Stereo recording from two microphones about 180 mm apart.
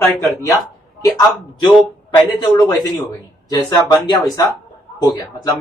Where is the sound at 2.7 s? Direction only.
20° left (ahead or behind).